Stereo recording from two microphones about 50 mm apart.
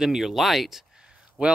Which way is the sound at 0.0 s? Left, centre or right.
Centre.